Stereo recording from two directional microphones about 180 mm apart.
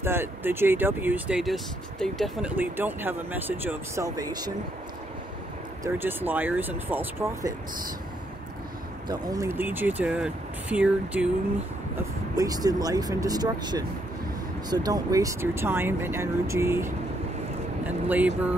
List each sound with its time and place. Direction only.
0.0 s speech: 15° right (ahead or behind)
5.9 s speech: 10° right (ahead or behind)
9.0 s speech: 20° right (ahead or behind)
12.4 s speech: 20° right (ahead or behind)